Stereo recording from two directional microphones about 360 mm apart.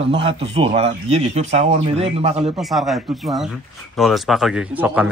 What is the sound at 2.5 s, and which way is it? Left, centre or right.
Speech, centre.